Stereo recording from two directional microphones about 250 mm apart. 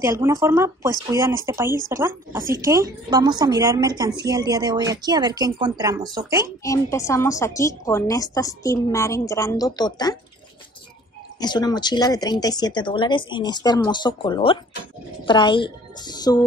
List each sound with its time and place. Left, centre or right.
0.0 s speech: centre
6.6 s a woman's voice: centre
11.3 s a woman's voice: centre